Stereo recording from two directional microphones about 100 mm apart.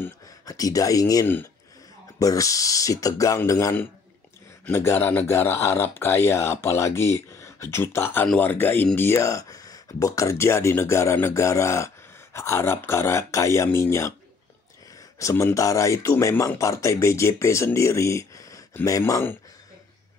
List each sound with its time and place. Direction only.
0.5 s speech: 35° left (ahead or behind)
4.7 s speech: 25° left (ahead or behind)
15.1 s speech: 30° left (ahead or behind)